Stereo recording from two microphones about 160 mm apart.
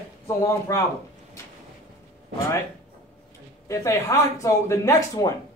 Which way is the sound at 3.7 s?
20° left (ahead or behind).